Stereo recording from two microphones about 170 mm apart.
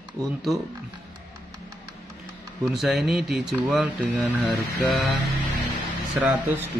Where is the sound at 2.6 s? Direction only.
Centre (ahead or behind).